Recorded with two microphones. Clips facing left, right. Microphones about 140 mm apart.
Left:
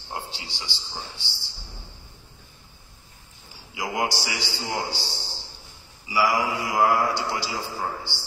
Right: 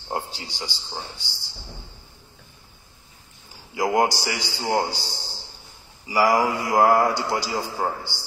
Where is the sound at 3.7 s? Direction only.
50° right (ahead or behind).